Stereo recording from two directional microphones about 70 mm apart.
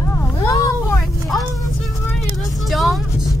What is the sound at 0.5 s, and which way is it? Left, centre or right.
Vehicle, left.